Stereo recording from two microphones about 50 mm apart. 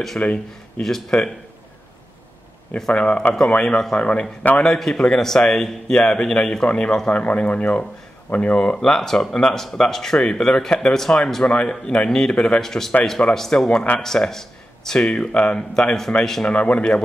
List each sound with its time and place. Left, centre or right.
0.2 s a man's voice: left
0.8 s speech: centre
2.9 s a man's voice: left
4.6 s a man's voice: centre
11.4 s a man's voice: left
12.1 s speech: centre
13.9 s speech: left
14.3 s speech: centre
16.4 s a man's voice: left